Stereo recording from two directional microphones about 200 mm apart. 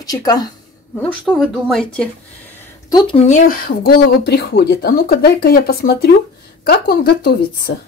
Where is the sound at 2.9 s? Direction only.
25° left (ahead or behind); by 7.7 s 50° left (ahead or behind).